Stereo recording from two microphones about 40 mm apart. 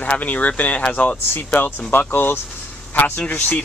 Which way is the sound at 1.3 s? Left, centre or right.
Left.